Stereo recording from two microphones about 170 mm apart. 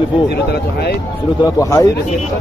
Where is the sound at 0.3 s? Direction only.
75° left (ahead or behind).